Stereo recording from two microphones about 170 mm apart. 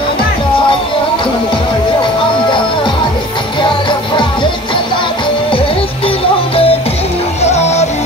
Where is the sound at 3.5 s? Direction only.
30° left (ahead or behind).